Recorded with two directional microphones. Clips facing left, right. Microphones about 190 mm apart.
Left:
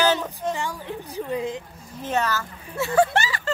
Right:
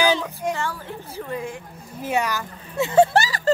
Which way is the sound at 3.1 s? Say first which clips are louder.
Right 4 dB; 35° right (ahead or behind).